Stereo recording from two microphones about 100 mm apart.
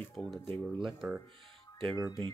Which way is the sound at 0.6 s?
5° right (ahead or behind).